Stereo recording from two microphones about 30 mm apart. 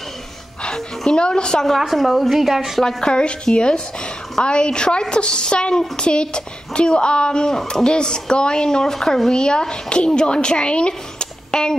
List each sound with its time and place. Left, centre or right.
0.6 s a woman's voice: left
1.8 s speech: centre
3.0 s a woman's voice: left
8.6 s speech: centre
9.3 s a woman's voice: left